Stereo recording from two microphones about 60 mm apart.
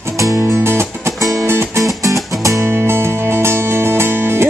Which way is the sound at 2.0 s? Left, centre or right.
Right.